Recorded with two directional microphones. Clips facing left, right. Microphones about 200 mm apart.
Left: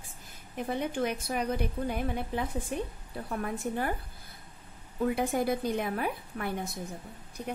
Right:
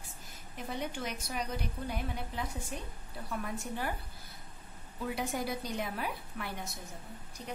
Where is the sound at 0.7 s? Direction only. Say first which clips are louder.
Left 7 dB; 55° left (ahead or behind).